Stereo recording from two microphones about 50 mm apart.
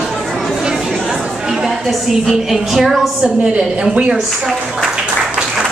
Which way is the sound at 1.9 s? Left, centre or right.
Centre.